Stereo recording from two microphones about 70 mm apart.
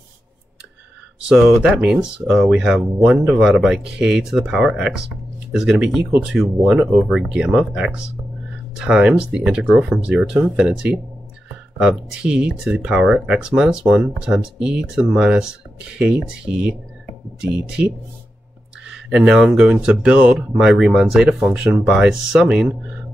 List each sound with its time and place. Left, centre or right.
1.3 s speech: centre
2.2 s speech: centre
4.7 s speech: centre
19.0 s speech: centre